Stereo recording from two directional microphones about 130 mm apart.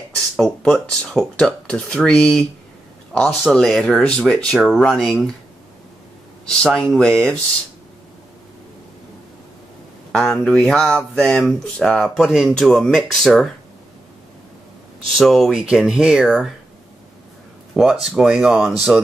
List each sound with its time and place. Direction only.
0.1 s speech: 5° left (ahead or behind)
6.5 s speech: 5° left (ahead or behind)
10.1 s speech: 5° left (ahead or behind)
15.0 s speech: centre (ahead or behind)
17.7 s speech: 5° right (ahead or behind)